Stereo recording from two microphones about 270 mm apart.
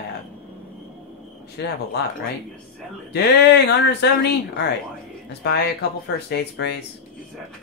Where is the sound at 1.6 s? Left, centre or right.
Left.